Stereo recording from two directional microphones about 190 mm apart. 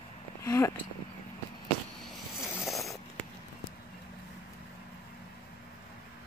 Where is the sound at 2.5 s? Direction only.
Centre (ahead or behind).